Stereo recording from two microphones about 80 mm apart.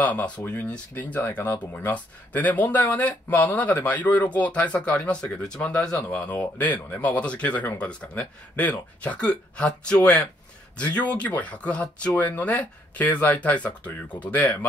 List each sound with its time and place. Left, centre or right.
0.0 s speech: centre